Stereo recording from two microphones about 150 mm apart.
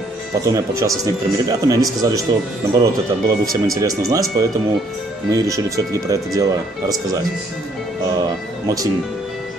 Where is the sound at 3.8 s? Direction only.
25° right (ahead or behind).